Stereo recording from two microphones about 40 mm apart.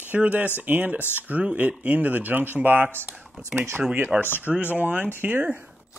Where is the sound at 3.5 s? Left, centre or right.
Centre.